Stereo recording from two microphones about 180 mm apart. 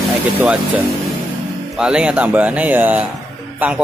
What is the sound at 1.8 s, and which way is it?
Speech, 5° right (ahead or behind).